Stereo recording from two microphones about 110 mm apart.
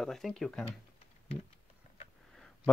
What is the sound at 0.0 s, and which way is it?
Speech, 5° left (ahead or behind).